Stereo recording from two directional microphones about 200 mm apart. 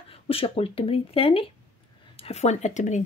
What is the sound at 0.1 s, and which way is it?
Speech, 30° left (ahead or behind).